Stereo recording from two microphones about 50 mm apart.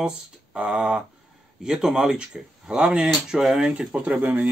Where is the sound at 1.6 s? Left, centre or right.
Centre.